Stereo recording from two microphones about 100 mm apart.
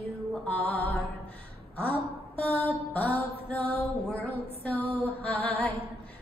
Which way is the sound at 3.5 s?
15° left (ahead or behind).